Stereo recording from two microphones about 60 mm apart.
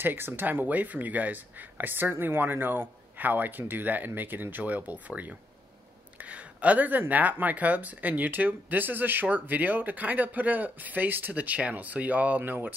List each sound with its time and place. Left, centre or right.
0.0 s speech: right